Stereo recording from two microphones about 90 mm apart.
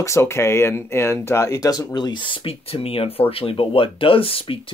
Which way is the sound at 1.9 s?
55° left (ahead or behind).